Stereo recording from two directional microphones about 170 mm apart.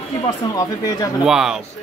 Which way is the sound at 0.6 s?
20° left (ahead or behind).